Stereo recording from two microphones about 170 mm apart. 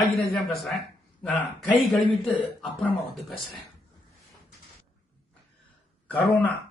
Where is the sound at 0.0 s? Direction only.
Centre (ahead or behind).